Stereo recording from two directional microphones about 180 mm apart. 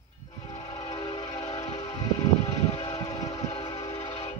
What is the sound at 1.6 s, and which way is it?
Music, 35° left (ahead or behind).